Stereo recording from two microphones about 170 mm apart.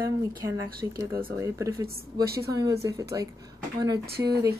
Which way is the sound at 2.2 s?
65° right (ahead or behind).